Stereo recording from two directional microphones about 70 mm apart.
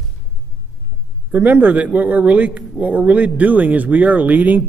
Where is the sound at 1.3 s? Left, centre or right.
Right.